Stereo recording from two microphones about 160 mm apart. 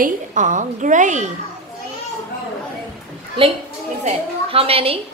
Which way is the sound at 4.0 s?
35° right (ahead or behind).